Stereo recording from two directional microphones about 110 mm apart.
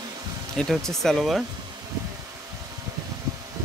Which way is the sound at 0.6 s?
5° left (ahead or behind).